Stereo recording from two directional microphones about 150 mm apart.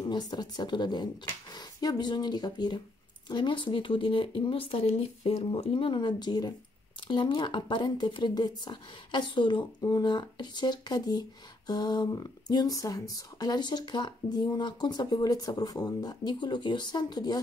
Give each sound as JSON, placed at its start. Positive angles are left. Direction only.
{"t": 0.0, "sound": "speech", "side_deg": 30}